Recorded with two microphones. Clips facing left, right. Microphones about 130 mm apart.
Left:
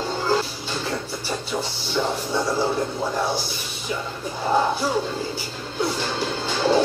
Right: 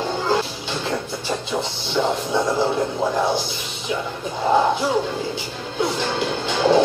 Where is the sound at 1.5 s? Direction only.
15° right (ahead or behind).